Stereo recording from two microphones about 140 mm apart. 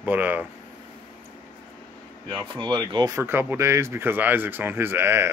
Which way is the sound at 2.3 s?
35° right (ahead or behind).